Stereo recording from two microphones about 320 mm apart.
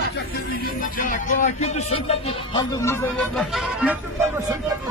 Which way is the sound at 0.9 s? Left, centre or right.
Left.